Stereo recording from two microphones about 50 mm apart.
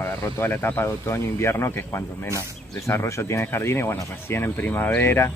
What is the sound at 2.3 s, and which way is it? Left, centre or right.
Speech, left.